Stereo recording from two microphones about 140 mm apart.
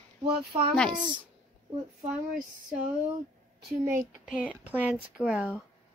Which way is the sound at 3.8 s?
20° right (ahead or behind).